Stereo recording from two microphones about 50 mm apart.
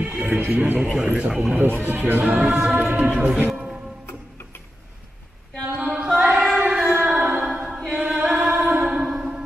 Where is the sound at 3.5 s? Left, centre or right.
Centre.